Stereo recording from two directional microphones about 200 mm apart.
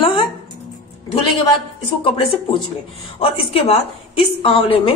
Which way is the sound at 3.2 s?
30° left (ahead or behind).